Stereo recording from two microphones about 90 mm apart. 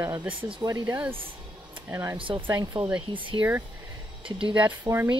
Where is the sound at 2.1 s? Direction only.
70° right (ahead or behind).